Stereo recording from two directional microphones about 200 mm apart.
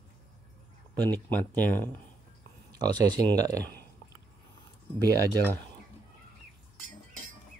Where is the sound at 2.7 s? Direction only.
20° right (ahead or behind).